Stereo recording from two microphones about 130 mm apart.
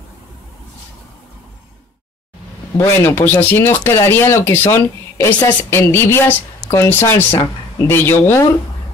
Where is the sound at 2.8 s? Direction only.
20° left (ahead or behind).